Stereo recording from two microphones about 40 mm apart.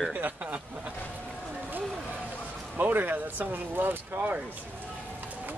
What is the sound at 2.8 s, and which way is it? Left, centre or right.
Speech, right.